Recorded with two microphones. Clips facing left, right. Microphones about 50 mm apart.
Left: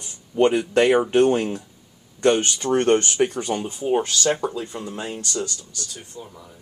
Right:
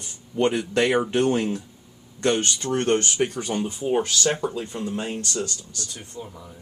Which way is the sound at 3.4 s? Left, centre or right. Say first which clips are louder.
Left 1 dB; centre.